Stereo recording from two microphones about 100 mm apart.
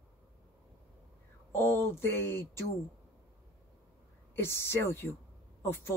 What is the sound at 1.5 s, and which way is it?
Speech, 25° left (ahead or behind).